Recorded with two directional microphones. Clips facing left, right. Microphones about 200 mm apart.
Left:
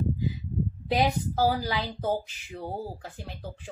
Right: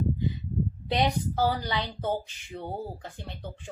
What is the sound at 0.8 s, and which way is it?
Speech, 5° left (ahead or behind).